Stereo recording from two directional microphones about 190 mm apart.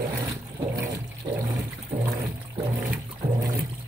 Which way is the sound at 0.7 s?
20° right (ahead or behind).